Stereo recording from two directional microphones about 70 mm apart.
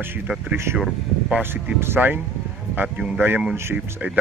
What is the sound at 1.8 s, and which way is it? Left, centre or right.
Speech, right.